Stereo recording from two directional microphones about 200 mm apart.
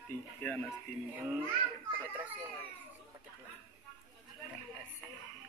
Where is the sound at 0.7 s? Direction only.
10° right (ahead or behind).